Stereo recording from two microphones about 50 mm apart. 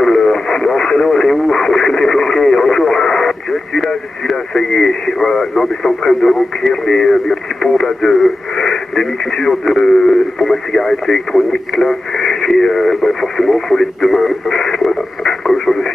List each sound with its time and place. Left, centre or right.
0.0 s speech: centre